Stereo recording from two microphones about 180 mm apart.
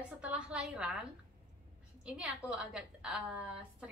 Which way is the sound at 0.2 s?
5° right (ahead or behind).